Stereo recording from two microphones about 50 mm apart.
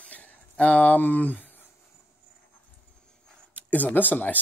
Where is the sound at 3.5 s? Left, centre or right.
Left.